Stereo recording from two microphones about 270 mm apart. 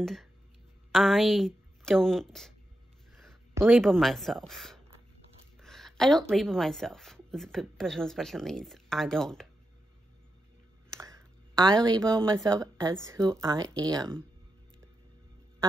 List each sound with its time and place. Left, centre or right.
0.0 s a woman's voice: centre
3.5 s a woman's voice: centre
5.6 s a sound: centre
6.3 s a woman's voice: centre
11.0 s a sound: centre
12.4 s speech: centre